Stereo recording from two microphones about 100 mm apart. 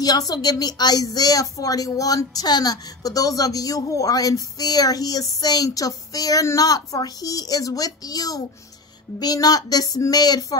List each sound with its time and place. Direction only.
0.0 s a woman's voice: 40° left (ahead or behind)